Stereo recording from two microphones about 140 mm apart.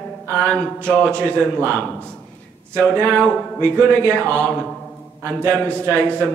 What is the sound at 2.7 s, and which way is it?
Speech, 10° left (ahead or behind).